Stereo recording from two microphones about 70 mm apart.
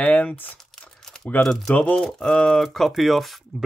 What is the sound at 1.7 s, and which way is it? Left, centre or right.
Speech, centre.